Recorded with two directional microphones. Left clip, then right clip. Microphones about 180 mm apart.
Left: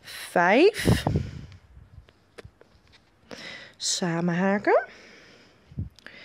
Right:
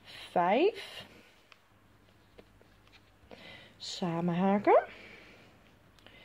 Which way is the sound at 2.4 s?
50° left (ahead or behind).